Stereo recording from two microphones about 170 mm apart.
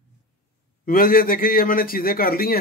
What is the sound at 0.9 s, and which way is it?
Speech, 55° left (ahead or behind).